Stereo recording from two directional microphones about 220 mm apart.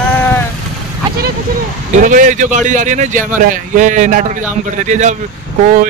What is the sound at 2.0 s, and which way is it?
A man's voice, 35° right (ahead or behind).